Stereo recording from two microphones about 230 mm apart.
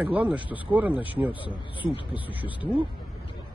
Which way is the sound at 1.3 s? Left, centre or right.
Left.